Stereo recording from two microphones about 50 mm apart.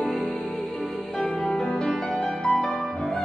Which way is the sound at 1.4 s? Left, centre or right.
Centre.